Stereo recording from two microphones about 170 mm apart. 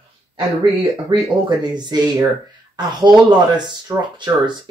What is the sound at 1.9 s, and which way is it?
Speech, 25° right (ahead or behind).